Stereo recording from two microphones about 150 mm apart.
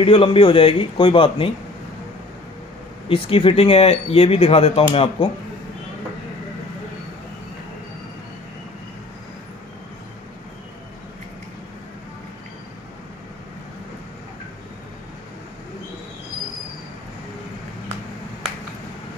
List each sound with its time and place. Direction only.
0.0 s speech: 35° left (ahead or behind)
3.1 s speech: 40° left (ahead or behind)